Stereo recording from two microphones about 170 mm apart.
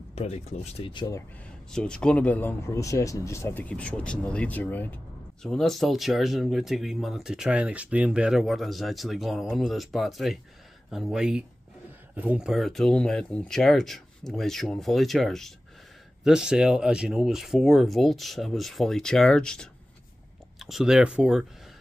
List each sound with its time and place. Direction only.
0.1 s speech: 40° left (ahead or behind)
1.7 s speech: 5° left (ahead or behind)